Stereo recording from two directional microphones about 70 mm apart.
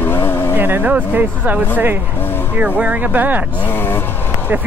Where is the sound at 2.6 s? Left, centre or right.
Right.